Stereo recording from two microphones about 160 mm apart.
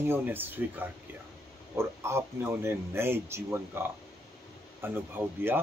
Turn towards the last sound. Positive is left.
turn(degrees=-15)  # may be behind; listen again after turning